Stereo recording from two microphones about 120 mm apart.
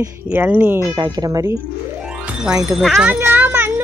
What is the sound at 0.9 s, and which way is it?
Speech, 35° right (ahead or behind).